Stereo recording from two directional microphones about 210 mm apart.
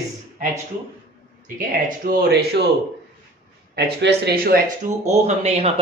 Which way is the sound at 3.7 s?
50° right (ahead or behind).